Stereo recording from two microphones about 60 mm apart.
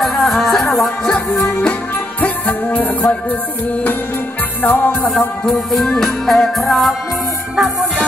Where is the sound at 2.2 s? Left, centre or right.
Left.